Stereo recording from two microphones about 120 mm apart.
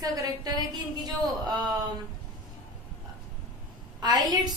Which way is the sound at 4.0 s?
35° right (ahead or behind).